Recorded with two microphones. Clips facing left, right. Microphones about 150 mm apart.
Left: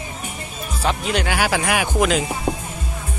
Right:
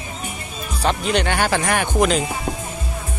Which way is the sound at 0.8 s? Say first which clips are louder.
Right 2 dB; 5° left (ahead or behind).